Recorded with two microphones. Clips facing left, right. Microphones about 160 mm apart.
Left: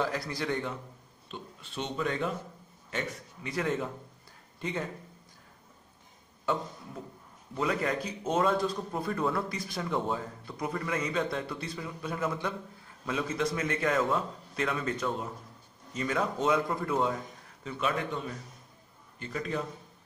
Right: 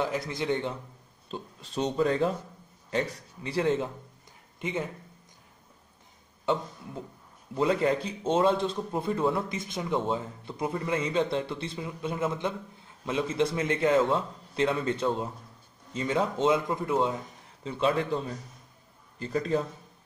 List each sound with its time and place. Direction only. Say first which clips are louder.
0.0 s a man's voice: right 2 dB; 20° right (ahead or behind)
1.3 s speech: right 6 dB; 35° right (ahead or behind); by 4.8 s 20° right (ahead or behind)
7.5 s a man's voice: right 5 dB; 25° right (ahead or behind)